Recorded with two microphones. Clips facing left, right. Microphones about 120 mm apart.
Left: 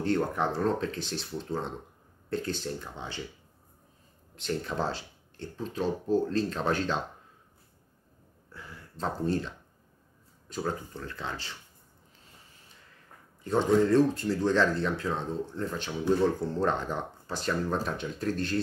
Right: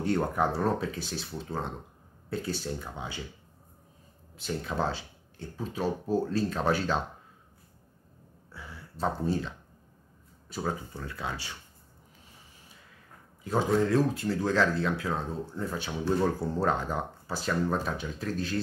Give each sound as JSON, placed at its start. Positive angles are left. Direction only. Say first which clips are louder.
{"t": 0.0, "sound": "speech", "louder": "even", "side_deg": -10}
{"t": 4.4, "sound": "speech", "louder": "even", "side_deg": -5}
{"t": 8.5, "sound": "speech", "louder": "right 1 dB", "side_deg": -5}
{"t": 10.5, "sound": "speech", "louder": "even", "side_deg": -10}
{"t": 13.4, "sound": "speech", "louder": "left 2 dB", "side_deg": -5}